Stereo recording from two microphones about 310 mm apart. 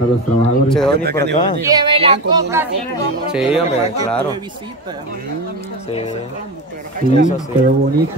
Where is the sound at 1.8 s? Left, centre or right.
Centre.